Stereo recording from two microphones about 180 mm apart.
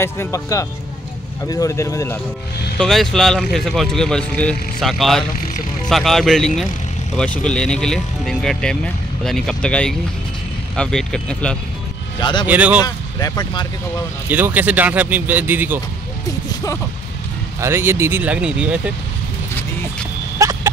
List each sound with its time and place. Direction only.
0.0 s speech: 15° left (ahead or behind)
2.8 s speech: centre (ahead or behind)
12.2 s speech: 25° left (ahead or behind)
12.4 s speech: 10° right (ahead or behind)
12.8 s speech: 20° left (ahead or behind)
14.3 s speech: 10° right (ahead or behind)
17.6 s speech: 15° right (ahead or behind)
20.3 s a sound: 15° right (ahead or behind)